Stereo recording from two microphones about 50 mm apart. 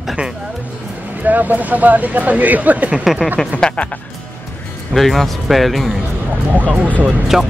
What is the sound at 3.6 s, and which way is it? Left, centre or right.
Speech, left.